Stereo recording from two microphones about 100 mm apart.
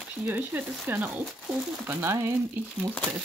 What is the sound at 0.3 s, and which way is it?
Speech, 20° right (ahead or behind).